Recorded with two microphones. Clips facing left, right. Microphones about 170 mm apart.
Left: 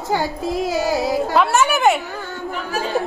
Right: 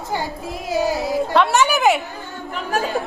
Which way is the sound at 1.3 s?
Centre (ahead or behind).